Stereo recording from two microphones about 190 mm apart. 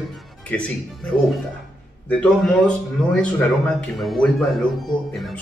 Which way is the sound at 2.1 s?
5° left (ahead or behind).